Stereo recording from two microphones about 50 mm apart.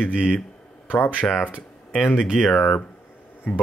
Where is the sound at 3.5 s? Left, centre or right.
Centre.